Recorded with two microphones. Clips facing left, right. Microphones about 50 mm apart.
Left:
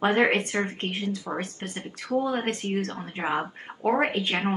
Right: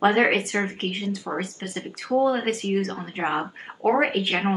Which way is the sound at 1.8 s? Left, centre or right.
Right.